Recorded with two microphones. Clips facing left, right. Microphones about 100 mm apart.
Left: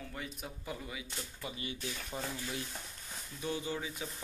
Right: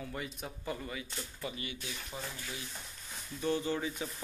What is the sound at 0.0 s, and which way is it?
Speech, centre (ahead or behind).